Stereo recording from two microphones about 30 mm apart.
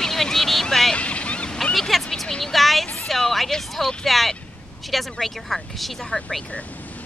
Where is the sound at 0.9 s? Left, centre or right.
Left.